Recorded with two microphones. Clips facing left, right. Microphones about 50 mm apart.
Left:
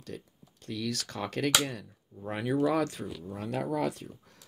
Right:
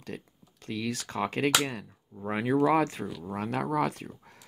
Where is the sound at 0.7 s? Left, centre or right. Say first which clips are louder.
Right 1 dB; right.